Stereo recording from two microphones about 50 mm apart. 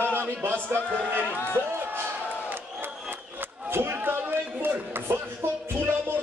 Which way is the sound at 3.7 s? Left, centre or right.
Right.